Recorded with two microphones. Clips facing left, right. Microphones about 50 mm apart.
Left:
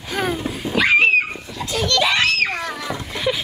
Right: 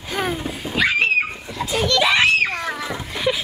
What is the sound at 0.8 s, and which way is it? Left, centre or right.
Dog, left.